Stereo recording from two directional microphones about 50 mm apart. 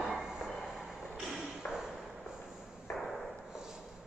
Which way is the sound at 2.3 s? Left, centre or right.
Centre.